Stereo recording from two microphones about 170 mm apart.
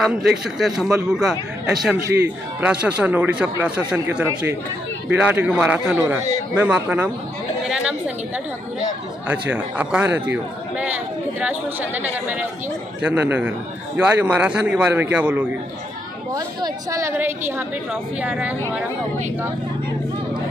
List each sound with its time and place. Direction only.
0.6 s a man's voice: 5° right (ahead or behind)
7.6 s chatter: 5° right (ahead or behind)
9.3 s a man's voice: 10° right (ahead or behind)
16.3 s a man's voice: 20° right (ahead or behind)